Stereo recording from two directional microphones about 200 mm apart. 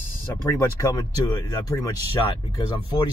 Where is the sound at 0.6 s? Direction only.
15° left (ahead or behind).